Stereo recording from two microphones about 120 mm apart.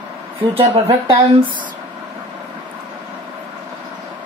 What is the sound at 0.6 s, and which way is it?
Speech, 45° right (ahead or behind).